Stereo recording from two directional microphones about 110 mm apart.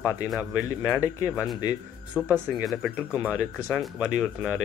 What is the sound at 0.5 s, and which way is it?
Speech, 30° left (ahead or behind).